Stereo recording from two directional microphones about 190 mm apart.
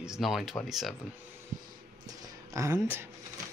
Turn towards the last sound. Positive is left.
turn(degrees=-15)  # may be behind; listen again after turning